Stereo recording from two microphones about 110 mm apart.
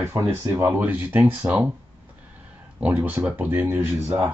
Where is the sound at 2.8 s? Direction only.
15° right (ahead or behind).